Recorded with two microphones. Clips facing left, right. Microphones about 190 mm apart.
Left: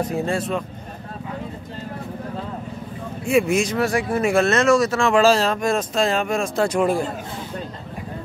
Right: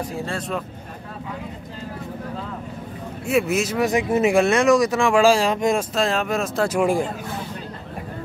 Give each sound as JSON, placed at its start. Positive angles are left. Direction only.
{"t": 0.3, "sound": "speech", "side_deg": 0}
{"t": 3.3, "sound": "speech", "side_deg": -5}
{"t": 3.8, "sound": "speech", "side_deg": -20}
{"t": 5.9, "sound": "speech", "side_deg": 0}